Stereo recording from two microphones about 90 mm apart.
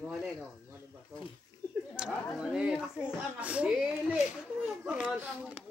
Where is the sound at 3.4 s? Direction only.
15° right (ahead or behind).